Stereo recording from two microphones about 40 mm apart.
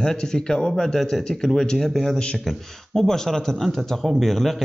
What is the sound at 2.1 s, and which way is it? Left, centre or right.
Speech, left.